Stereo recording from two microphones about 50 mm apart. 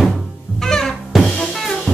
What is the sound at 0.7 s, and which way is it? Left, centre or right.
Music, centre.